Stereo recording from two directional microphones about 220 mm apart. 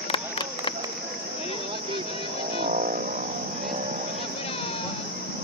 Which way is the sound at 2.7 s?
35° right (ahead or behind).